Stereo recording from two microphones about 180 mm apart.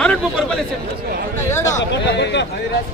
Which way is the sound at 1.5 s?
15° left (ahead or behind).